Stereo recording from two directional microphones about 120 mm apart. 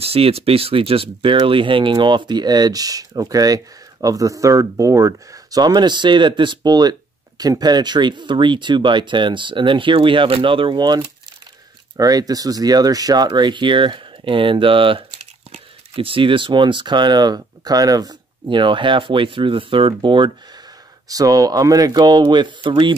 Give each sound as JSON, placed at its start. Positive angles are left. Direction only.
{"t": 0.0, "sound": "speech", "side_deg": -55}
{"t": 21.1, "sound": "speech", "side_deg": -30}